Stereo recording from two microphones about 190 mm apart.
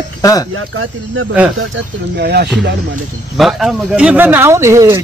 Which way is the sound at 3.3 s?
Centre (ahead or behind).